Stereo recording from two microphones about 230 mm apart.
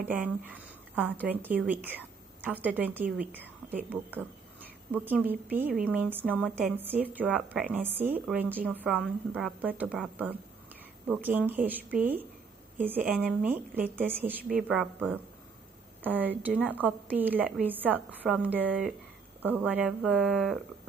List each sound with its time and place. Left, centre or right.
0.0 s a woman's voice: centre
16.5 s a woman's voice: centre
16.8 s speech: centre